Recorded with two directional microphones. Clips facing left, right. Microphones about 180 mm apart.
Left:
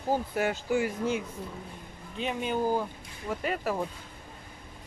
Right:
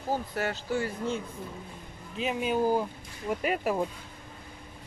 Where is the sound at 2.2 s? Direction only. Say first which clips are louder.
Right 2 dB; 5° right (ahead or behind).